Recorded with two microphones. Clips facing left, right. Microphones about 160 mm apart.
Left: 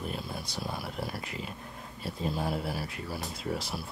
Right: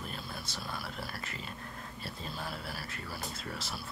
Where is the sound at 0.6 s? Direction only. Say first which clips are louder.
Left 5 dB; 25° left (ahead or behind).